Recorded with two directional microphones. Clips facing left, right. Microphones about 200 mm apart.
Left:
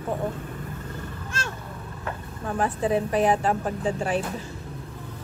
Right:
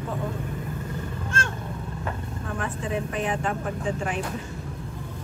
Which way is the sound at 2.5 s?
35° left (ahead or behind).